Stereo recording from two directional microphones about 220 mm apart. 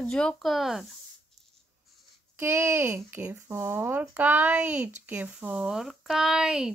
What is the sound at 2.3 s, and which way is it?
Speech, 10° right (ahead or behind).